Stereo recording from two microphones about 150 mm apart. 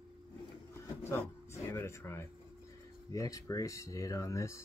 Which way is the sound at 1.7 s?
15° left (ahead or behind).